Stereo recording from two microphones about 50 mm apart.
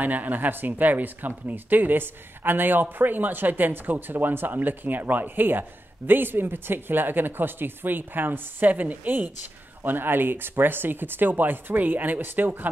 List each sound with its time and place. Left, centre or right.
0.0 s speech: right